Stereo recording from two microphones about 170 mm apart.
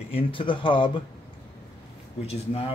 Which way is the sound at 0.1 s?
30° left (ahead or behind).